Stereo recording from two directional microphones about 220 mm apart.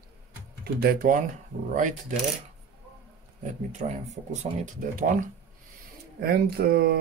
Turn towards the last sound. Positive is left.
turn(degrees=-45)  # may be behind; listen again after turning